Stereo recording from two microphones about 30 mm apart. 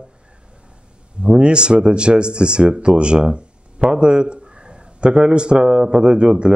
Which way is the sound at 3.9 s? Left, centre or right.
Right.